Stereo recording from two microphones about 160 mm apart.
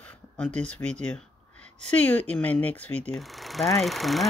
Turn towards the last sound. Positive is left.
turn(degrees=0)  # may be behind; listen again after turning